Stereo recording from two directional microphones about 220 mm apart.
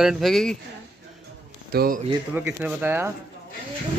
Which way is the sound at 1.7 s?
45° right (ahead or behind).